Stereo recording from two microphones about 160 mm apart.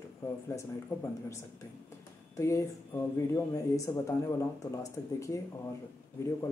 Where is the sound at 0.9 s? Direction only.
15° left (ahead or behind).